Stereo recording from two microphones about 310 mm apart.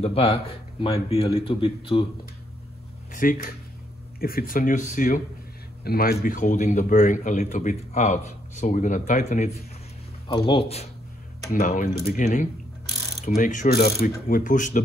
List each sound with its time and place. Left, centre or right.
0.0 s a man's voice: centre
3.1 s a man's voice: left